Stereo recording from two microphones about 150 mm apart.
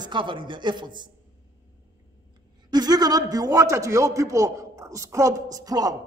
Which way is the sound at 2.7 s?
25° right (ahead or behind).